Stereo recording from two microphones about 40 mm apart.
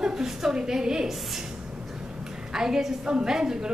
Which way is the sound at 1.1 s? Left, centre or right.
Centre.